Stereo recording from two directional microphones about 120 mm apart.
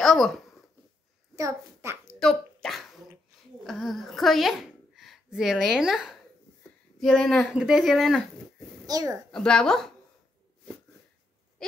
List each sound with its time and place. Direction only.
0.0 s speech: centre (ahead or behind)
1.3 s a child's voice: 25° right (ahead or behind)
2.1 s a sound: 5° left (ahead or behind)
3.6 s a woman's voice: centre (ahead or behind)
8.8 s a child's voice: 30° right (ahead or behind)
9.3 s speech: 5° left (ahead or behind)